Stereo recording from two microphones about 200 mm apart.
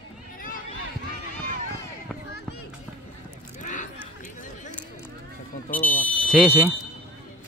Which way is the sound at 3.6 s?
40° left (ahead or behind).